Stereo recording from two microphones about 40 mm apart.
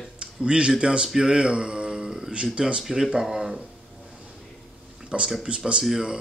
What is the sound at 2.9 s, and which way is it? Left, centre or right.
Speech, centre.